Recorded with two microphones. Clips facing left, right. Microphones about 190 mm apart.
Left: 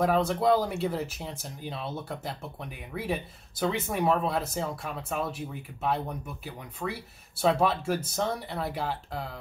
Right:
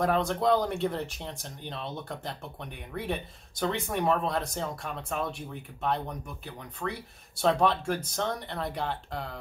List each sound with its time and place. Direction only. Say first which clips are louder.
0.0 s speech: left 2 dB; 5° left (ahead or behind)